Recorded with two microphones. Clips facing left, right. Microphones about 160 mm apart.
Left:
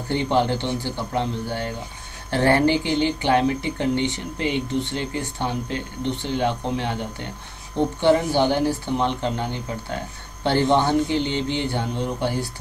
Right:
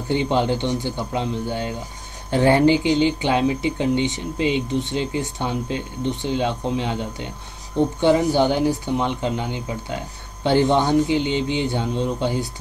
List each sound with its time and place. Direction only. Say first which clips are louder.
0.1 s speech: right 1 dB; 15° right (ahead or behind)